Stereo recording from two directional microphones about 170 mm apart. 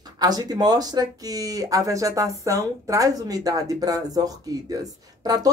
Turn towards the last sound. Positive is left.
turn(degrees=-20)  # may be behind; listen again after turning